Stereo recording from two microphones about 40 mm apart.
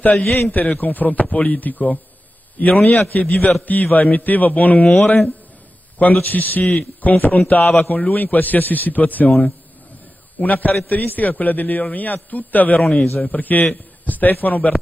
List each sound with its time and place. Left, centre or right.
0.0 s a man's voice: left
10.4 s a man's voice: left